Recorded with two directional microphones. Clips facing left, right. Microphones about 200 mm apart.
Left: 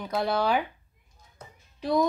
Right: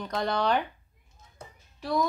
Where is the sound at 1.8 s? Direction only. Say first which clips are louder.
Left 3 dB; 20° left (ahead or behind).